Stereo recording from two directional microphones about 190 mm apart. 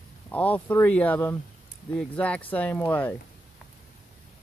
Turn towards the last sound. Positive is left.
turn(degrees=10)  # may be behind; listen again after turning